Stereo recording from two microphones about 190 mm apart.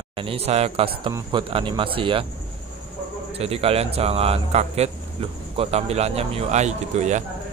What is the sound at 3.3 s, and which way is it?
A man's voice, 30° right (ahead or behind).